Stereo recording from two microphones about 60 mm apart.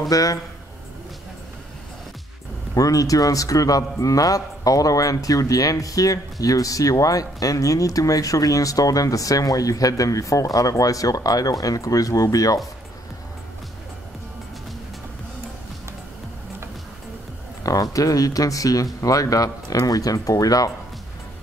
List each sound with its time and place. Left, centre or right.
0.1 s speech: left
2.7 s speech: left
17.6 s speech: left